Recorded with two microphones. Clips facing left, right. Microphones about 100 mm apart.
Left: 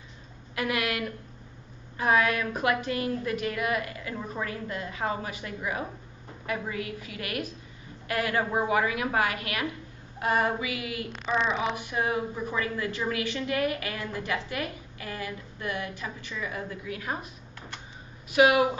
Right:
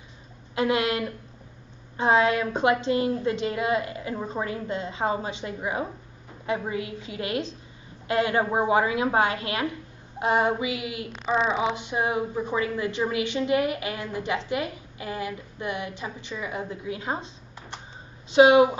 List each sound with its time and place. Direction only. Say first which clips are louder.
0.6 s a woman's voice: right 5 dB; 25° right (ahead or behind)